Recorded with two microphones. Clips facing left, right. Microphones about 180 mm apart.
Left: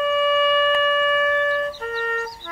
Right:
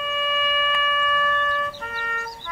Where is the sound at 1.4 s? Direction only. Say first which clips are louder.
Left 6 dB; 50° left (ahead or behind).